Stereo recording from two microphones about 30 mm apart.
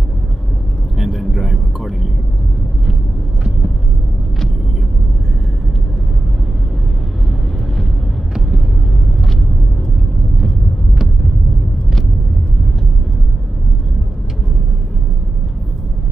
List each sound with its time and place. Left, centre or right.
0.9 s vehicle: centre